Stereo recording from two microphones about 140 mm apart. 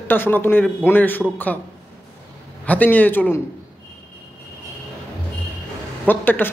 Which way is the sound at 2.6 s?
10° left (ahead or behind).